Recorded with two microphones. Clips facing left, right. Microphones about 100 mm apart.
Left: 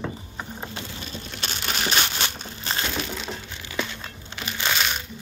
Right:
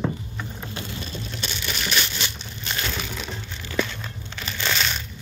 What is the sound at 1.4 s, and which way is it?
Crushing, 50° left (ahead or behind).